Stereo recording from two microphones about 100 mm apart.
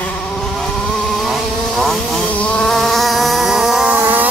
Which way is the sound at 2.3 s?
10° left (ahead or behind).